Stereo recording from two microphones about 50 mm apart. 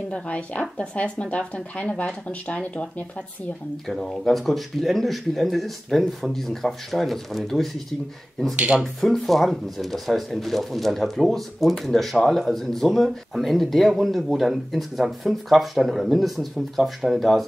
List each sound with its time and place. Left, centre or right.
0.1 s speech: left
3.8 s speech: centre
8.5 s speech: centre
9.2 s speech: centre